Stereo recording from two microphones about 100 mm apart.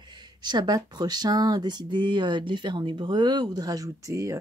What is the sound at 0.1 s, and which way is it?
Speech, 45° right (ahead or behind).